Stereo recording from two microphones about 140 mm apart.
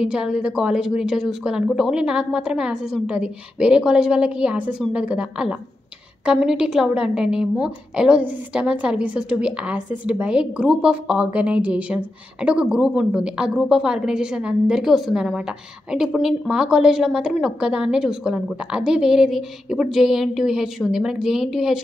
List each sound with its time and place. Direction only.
0.0 s a woman's voice: 5° right (ahead or behind)